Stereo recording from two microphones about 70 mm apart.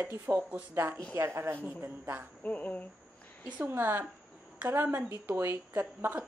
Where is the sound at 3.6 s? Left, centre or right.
Right.